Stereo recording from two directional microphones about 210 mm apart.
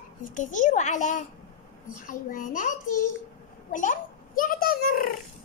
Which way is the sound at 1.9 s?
40° left (ahead or behind).